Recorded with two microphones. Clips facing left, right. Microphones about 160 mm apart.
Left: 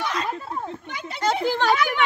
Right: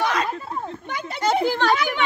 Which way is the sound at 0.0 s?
80° right.